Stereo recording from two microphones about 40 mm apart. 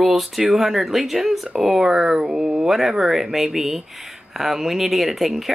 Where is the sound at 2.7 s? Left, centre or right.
Centre.